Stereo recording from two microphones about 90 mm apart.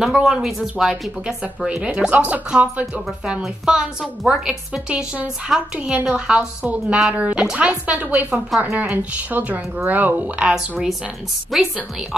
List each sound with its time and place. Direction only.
0.0 s speech: 5° right (ahead or behind)
3.3 s speech: 5° right (ahead or behind)
5.5 s a woman's voice: centre (ahead or behind); by 10.5 s 15° right (ahead or behind)
10.5 s a woman's voice: 5° right (ahead or behind)